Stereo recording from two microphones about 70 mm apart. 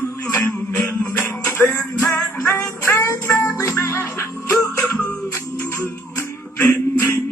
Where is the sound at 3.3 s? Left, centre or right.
Left.